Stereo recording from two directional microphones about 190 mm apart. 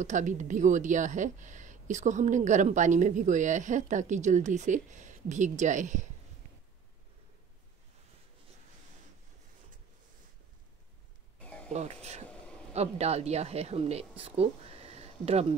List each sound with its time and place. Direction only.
0.0 s a woman's voice: 40° right (ahead or behind)
11.3 s a sound: 5° left (ahead or behind)
11.7 s a woman's voice: 35° right (ahead or behind)